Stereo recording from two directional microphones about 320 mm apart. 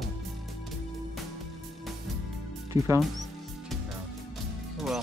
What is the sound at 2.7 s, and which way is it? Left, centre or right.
Speech, centre.